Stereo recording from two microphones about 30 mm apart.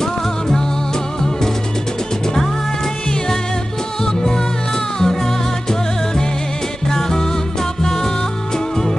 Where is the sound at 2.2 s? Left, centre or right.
Centre.